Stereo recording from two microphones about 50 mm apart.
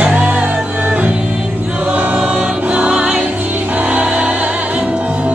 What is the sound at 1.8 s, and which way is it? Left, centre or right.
Choir, right.